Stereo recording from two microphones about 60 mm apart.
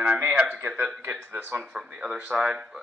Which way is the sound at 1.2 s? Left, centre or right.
Right.